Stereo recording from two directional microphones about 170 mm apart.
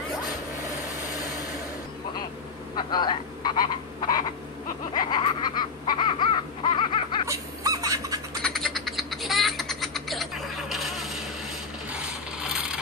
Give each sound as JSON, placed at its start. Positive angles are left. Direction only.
{"t": 2.7, "sound": "vehicle", "side_deg": 25}
{"t": 4.0, "sound": "frog", "side_deg": 25}
{"t": 4.9, "sound": "baby cry", "side_deg": 25}
{"t": 7.2, "sound": "bird", "side_deg": -20}
{"t": 8.4, "sound": "a sound", "side_deg": 5}
{"t": 11.9, "sound": "mechanisms", "side_deg": -5}